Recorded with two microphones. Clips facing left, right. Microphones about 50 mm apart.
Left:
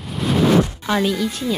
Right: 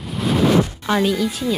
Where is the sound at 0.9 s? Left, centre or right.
Centre.